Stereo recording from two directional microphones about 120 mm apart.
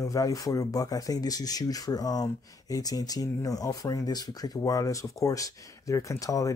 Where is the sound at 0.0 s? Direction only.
30° left (ahead or behind).